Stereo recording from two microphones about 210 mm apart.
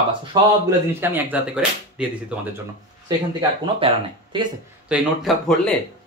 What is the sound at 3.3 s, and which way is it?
Speech, 25° right (ahead or behind).